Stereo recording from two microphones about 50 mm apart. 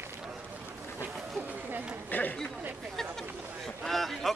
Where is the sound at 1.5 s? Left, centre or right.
Right.